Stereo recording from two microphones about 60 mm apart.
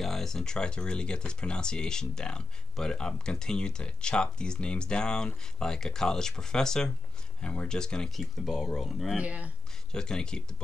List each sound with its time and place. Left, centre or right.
0.0 s speech: centre
8.1 s speech: centre
9.1 s speech: right
9.9 s speech: centre